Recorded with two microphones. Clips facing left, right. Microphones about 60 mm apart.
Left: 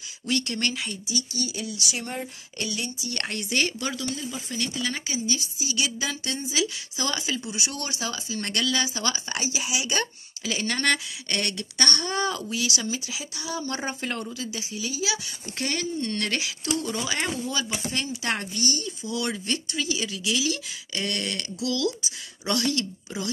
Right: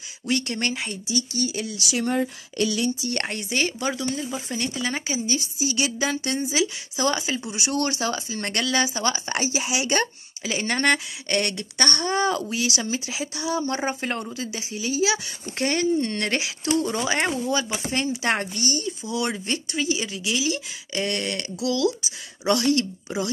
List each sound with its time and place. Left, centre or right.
0.3 s speech: right
1.0 s speech: right
1.8 s speech: right
3.3 s speech: centre
3.8 s speech: right
7.7 s speech: right
8.3 s speech: right
10.4 s speech: right
13.5 s speech: right
18.7 s speech: right